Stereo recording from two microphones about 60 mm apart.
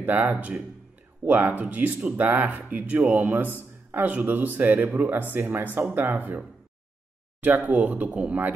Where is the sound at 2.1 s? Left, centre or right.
Right.